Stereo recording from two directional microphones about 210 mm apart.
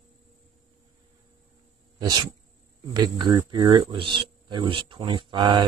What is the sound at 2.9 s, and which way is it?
Speech, 20° right (ahead or behind).